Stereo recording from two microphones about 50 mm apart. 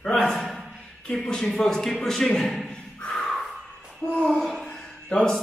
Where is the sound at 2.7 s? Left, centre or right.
Centre.